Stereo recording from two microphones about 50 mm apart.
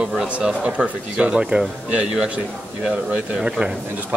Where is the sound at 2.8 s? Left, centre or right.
Right.